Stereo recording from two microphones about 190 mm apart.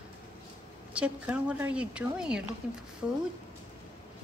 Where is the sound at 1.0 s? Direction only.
5° right (ahead or behind).